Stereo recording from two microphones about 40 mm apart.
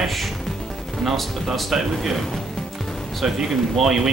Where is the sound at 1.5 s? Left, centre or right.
Centre.